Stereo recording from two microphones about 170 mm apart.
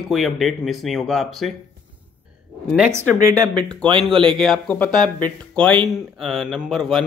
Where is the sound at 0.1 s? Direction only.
Centre (ahead or behind).